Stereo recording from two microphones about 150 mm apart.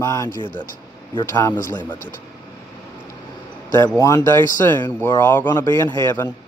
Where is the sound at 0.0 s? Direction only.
20° left (ahead or behind).